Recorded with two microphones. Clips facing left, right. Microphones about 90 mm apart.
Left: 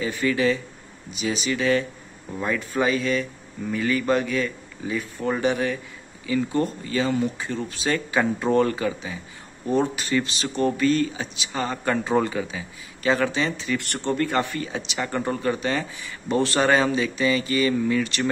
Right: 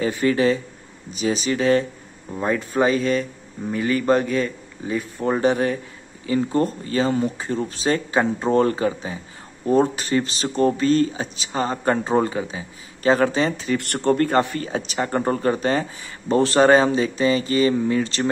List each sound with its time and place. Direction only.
0.2 s speech: 35° right (ahead or behind)